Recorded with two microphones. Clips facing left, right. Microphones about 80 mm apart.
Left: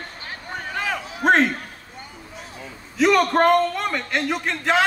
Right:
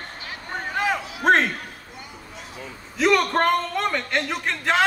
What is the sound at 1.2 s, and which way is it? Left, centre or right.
Speech, centre.